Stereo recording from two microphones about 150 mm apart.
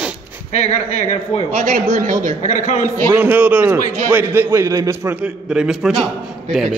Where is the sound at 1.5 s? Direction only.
65° right (ahead or behind).